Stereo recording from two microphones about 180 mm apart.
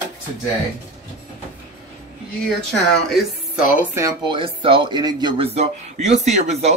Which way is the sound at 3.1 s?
5° right (ahead or behind).